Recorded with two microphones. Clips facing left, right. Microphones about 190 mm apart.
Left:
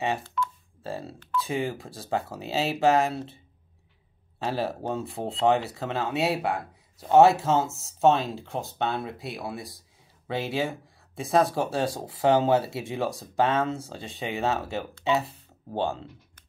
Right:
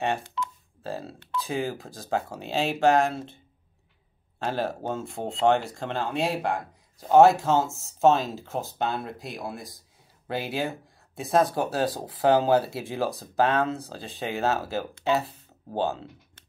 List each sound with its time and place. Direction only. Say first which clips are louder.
0.2 s telephone dialing: left 3 dB; 20° right (ahead or behind)
0.8 s speech: right 1 dB; centre (ahead or behind)
4.4 s speech: even; centre (ahead or behind)